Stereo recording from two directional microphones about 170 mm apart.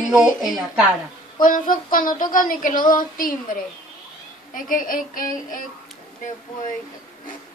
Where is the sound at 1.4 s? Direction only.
55° left (ahead or behind).